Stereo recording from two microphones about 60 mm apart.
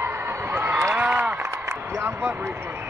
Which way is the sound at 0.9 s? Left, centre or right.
Right.